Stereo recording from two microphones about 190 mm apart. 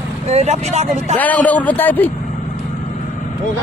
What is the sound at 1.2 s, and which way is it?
Speech, 10° left (ahead or behind).